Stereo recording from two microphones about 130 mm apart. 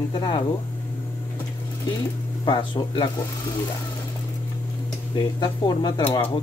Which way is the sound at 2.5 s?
35° left (ahead or behind).